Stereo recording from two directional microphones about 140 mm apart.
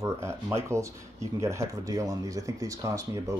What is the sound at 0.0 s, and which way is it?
Speech, 20° right (ahead or behind).